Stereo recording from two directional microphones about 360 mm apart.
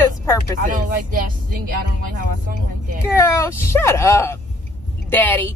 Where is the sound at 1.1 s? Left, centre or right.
Right.